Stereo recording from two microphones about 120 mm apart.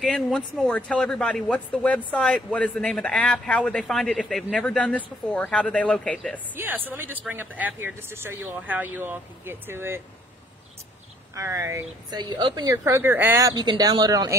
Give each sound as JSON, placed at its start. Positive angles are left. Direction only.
{"t": 0.0, "sound": "speech", "side_deg": 10}
{"t": 6.5, "sound": "speech", "side_deg": -15}
{"t": 11.3, "sound": "speech", "side_deg": -25}
{"t": 12.2, "sound": "a woman's voice", "side_deg": -40}
{"t": 12.7, "sound": "speech", "side_deg": -20}